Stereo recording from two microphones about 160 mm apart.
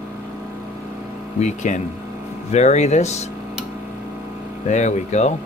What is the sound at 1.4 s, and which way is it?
Speech, 45° left (ahead or behind).